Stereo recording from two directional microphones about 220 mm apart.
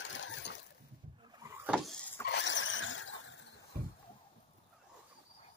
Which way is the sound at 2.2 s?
55° left (ahead or behind).